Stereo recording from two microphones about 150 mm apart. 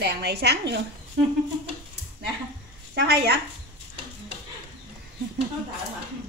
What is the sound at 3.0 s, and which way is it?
Speech, 90° right.